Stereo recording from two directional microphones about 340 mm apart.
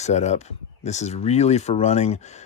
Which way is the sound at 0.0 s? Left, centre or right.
Centre.